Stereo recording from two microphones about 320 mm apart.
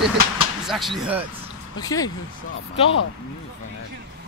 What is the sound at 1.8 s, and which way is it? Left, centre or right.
Speech, centre.